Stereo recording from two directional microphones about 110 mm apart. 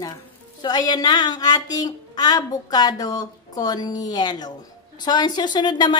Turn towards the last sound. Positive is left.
turn(degrees=40)  # may be behind; listen again after turning